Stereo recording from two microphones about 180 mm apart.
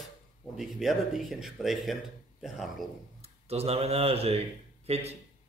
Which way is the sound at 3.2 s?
35° right (ahead or behind).